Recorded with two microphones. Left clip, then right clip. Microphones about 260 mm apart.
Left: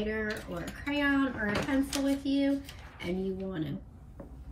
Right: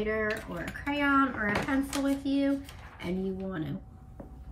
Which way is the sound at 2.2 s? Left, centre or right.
Right.